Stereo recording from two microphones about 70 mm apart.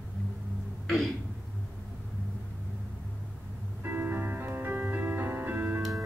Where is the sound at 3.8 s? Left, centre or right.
Right.